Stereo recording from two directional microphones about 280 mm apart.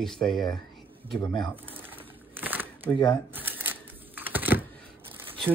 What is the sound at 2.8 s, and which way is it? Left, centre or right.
Speech, centre.